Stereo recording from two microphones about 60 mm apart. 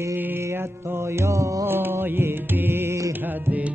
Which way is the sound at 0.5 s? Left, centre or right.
Right.